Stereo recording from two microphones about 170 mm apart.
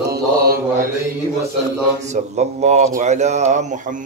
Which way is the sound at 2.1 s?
40° right (ahead or behind).